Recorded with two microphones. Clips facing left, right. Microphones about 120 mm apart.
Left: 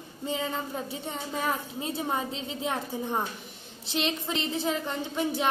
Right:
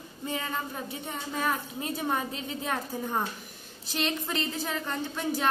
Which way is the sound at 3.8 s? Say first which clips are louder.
Left 1 dB; 20° left (ahead or behind).